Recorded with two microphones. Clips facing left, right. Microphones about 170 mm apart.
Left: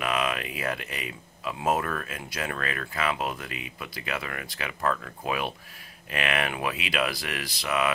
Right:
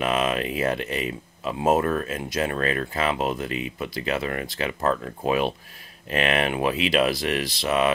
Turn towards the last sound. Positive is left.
turn(degrees=-30)  # may be behind; listen again after turning